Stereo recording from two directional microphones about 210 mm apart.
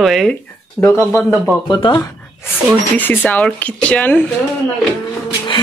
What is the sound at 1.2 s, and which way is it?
Speech, centre (ahead or behind).